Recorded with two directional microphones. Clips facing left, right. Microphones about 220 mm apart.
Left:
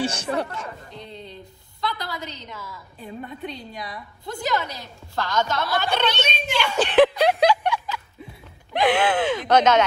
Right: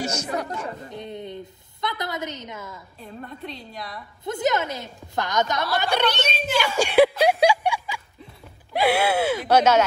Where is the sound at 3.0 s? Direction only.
Centre (ahead or behind).